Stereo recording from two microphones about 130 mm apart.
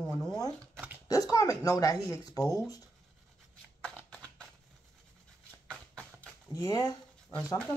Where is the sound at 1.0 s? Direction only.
25° left (ahead or behind).